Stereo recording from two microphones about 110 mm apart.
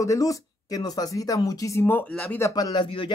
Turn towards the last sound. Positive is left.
turn(degrees=50)  # may be behind; listen again after turning